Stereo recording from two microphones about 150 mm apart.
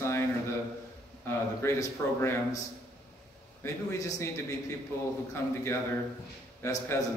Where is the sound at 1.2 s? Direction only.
15° left (ahead or behind).